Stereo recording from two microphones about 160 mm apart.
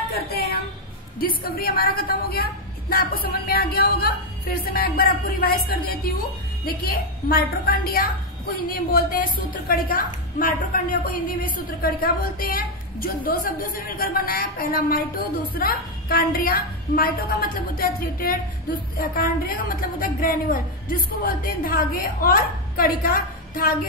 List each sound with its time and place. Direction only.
0.1 s a woman's voice: 70° left (ahead or behind)